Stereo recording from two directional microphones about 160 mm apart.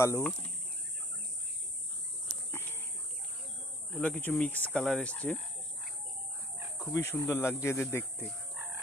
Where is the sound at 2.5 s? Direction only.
15° left (ahead or behind).